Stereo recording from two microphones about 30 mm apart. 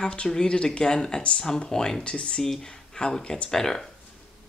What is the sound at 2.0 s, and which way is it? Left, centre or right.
Speech, left.